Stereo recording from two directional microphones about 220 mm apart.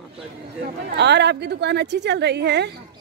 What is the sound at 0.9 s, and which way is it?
Speech, 50° right (ahead or behind).